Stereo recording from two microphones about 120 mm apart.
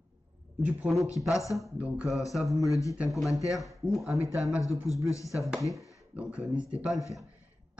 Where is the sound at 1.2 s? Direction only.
25° left (ahead or behind).